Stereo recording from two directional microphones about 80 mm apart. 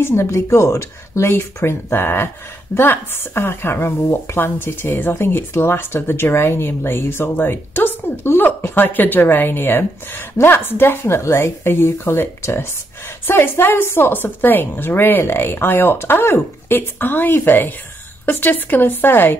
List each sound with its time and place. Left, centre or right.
0.0 s speech: left